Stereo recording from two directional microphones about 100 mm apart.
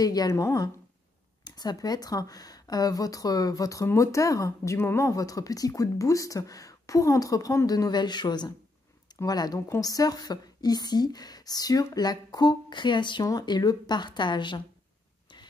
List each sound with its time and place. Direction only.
0.0 s speech: 40° left (ahead or behind)
1.4 s speech: 45° left (ahead or behind)
13.3 s speech: 40° left (ahead or behind)